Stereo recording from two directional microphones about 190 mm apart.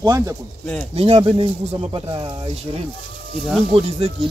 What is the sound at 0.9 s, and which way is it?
Speech, 30° right (ahead or behind).